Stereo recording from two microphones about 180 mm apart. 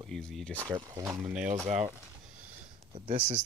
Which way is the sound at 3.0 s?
35° right (ahead or behind).